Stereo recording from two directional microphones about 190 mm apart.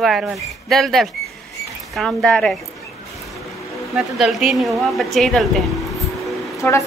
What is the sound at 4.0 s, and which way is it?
Speech, centre (ahead or behind).